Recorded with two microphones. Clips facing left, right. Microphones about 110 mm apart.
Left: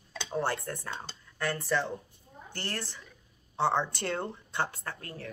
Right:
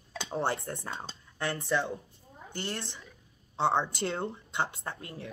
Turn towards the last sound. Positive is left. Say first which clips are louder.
# right 1 dB
turn(degrees=-20)  # may be behind; listen again after turning